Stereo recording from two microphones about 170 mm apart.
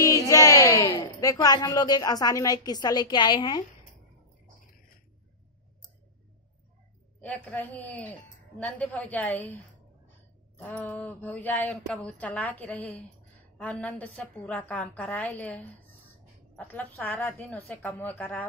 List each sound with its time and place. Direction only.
0.0 s speech: 20° left (ahead or behind)
7.2 s a woman's voice: 10° left (ahead or behind)
10.6 s a woman's voice: 10° left (ahead or behind)